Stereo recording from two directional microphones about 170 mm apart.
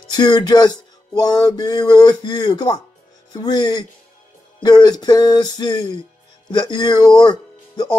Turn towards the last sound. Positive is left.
turn(degrees=25)  # may be behind; listen again after turning